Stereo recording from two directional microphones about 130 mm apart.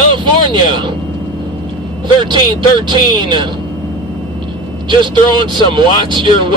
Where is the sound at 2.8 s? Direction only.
35° right (ahead or behind).